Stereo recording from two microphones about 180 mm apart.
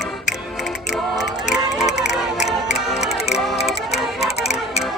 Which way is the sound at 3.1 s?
35° left (ahead or behind).